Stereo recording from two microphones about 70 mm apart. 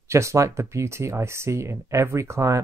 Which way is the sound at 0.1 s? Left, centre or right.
Right.